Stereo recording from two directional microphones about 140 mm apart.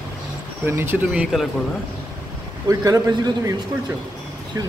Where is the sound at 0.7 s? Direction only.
15° right (ahead or behind).